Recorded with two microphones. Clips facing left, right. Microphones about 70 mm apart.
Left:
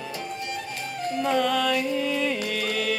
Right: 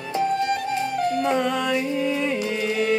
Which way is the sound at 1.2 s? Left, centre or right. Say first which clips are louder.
Right 1 dB; centre.